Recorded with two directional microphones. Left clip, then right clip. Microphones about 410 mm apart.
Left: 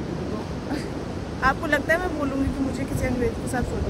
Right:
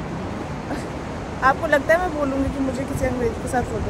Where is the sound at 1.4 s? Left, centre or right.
Centre.